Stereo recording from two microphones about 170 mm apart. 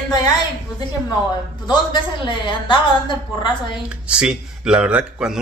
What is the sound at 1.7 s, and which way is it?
A woman's voice, 25° left (ahead or behind).